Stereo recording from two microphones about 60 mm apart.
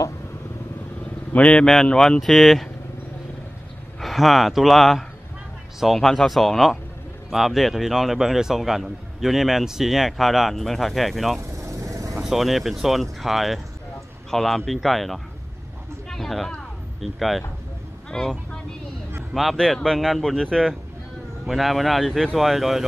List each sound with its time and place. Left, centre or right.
1.3 s a man's voice: centre
1.7 s a man's voice: centre
4.0 s a man's voice: centre
11.5 s vehicle: right
12.2 s a man's voice: centre
18.1 s speech: centre
19.5 s speech: centre
21.5 s a man's voice: centre